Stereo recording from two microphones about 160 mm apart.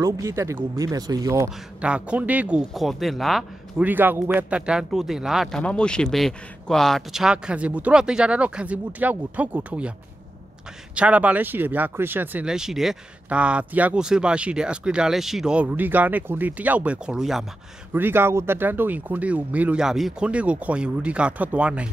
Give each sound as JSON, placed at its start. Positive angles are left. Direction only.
{"t": 0.0, "sound": "speech", "side_deg": -20}
{"t": 1.8, "sound": "speech", "side_deg": -5}
{"t": 11.0, "sound": "speech", "side_deg": -10}
{"t": 17.9, "sound": "speech", "side_deg": -15}